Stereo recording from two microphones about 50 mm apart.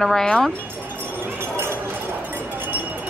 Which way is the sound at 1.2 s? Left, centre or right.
Right.